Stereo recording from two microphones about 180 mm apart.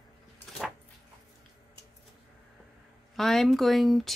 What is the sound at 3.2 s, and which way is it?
Speech, centre (ahead or behind).